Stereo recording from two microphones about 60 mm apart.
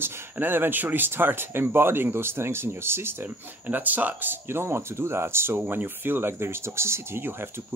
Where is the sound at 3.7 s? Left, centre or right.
Right.